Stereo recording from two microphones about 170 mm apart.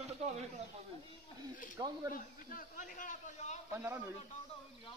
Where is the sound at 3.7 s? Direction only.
15° right (ahead or behind).